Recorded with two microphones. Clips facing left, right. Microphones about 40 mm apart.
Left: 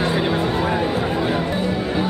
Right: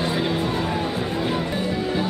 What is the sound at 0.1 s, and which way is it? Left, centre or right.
Music, left.